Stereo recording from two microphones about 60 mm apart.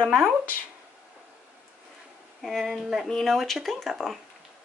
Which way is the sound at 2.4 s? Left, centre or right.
Centre.